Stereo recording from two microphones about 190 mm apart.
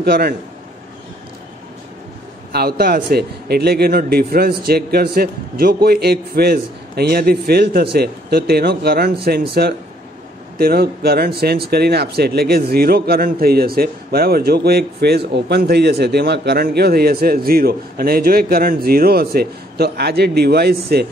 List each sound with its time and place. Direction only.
0.0 s speech: 55° right (ahead or behind)
2.5 s speech: 55° right (ahead or behind)